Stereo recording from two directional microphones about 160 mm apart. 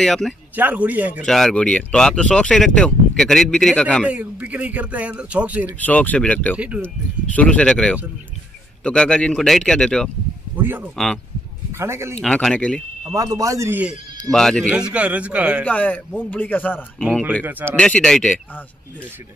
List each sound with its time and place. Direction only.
0.0 s speech: 5° left (ahead or behind)
0.6 s speech: 10° right (ahead or behind)
1.2 s speech: 5° left (ahead or behind)
4.0 s speech: 10° right (ahead or behind)
5.8 s speech: 10° left (ahead or behind)
6.5 s speech: 10° right (ahead or behind)
7.3 s speech: 5° left (ahead or behind)
10.6 s speech: 10° right (ahead or behind)
12.2 s speech: 5° left (ahead or behind)
13.1 s speech: 20° right (ahead or behind)
14.3 s speech: 5° left (ahead or behind)
15.6 s speech: 10° left (ahead or behind)
17.0 s speech: 5° right (ahead or behind)
17.7 s speech: 5° left (ahead or behind)